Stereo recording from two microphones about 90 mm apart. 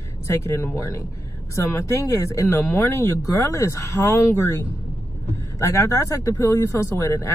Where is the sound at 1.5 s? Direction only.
35° left (ahead or behind).